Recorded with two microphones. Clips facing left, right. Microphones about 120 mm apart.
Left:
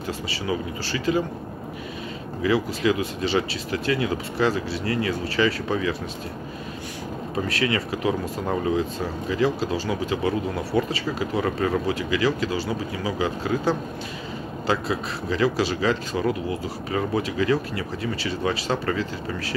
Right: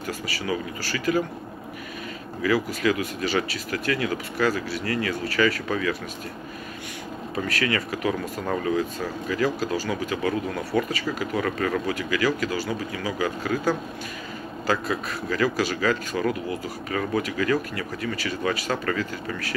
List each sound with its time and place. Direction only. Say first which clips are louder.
0.3 s speech: left 1 dB; 25° left (ahead or behind)
2.4 s speech: left 1 dB; 25° left (ahead or behind)
7.4 s speech: left 1 dB; 25° left (ahead or behind)
10.2 s speech: left 1 dB; 10° left (ahead or behind)
10.8 s speech: left 1 dB; 30° left (ahead or behind)